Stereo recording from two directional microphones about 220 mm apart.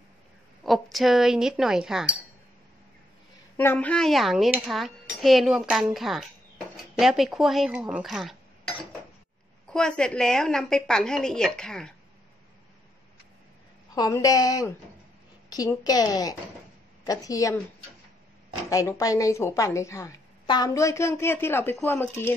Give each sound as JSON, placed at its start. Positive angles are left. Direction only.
{"t": 0.7, "sound": "speech", "side_deg": 0}
{"t": 3.5, "sound": "speech", "side_deg": 10}
{"t": 9.7, "sound": "speech", "side_deg": 5}
{"t": 13.9, "sound": "a woman's voice", "side_deg": 15}
{"t": 18.7, "sound": "a woman's voice", "side_deg": 15}